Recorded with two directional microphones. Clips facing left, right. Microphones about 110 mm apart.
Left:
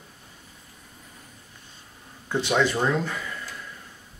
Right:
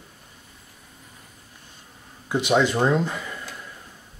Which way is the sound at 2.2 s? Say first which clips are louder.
Right 3 dB; 15° right (ahead or behind).